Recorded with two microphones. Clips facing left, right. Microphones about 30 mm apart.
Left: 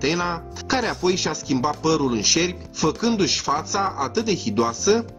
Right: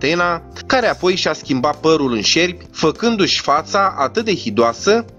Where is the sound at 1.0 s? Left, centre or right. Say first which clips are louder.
Right 5 dB; right.